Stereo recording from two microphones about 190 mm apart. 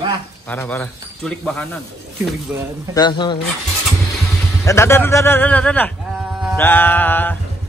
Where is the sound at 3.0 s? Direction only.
25° left (ahead or behind).